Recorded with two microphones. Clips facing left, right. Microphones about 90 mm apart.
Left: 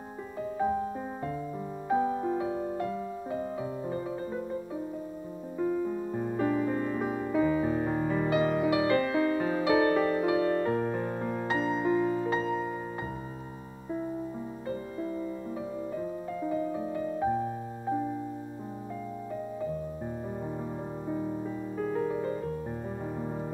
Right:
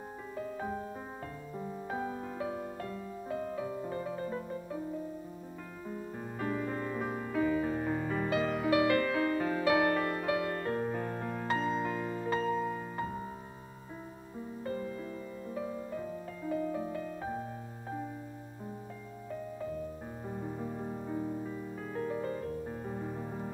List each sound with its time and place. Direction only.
2.0 s music: 25° left (ahead or behind)
6.2 s music: 10° left (ahead or behind)
16.0 s piano: 15° left (ahead or behind)
21.9 s music: 15° left (ahead or behind)